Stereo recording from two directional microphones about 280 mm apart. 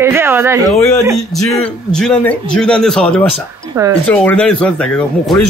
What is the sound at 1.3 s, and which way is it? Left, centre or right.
Speech, centre.